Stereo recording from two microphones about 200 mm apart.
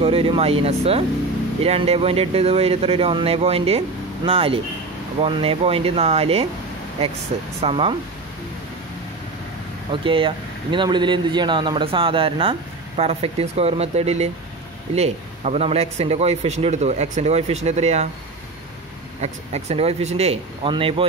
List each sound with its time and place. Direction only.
0.0 s speech: 30° right (ahead or behind)
9.8 s speech: 25° right (ahead or behind)
19.2 s speech: 30° right (ahead or behind)